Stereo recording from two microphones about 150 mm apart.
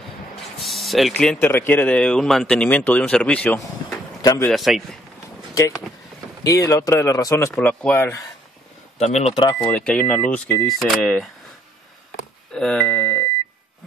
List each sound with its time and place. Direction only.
0.6 s speech: centre (ahead or behind)
4.2 s speech: 25° left (ahead or behind)
4.5 s speech: centre (ahead or behind)
6.4 s speech: 20° left (ahead or behind)
7.5 s speech: 10° left (ahead or behind)
9.0 s speech: 45° left (ahead or behind)
9.3 s speech: 35° left (ahead or behind)
9.7 s speech: 5° left (ahead or behind)
12.5 s speech: 5° left (ahead or behind)